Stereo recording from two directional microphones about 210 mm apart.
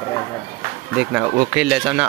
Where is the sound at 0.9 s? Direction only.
5° right (ahead or behind).